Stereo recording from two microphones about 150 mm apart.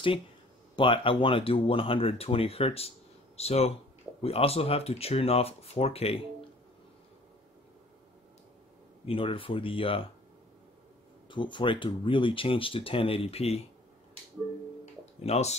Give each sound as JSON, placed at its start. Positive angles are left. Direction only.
{"t": 0.7, "sound": "speech", "side_deg": 35}
{"t": 9.0, "sound": "speech", "side_deg": 35}
{"t": 11.2, "sound": "speech", "side_deg": 30}
{"t": 15.2, "sound": "speech", "side_deg": 45}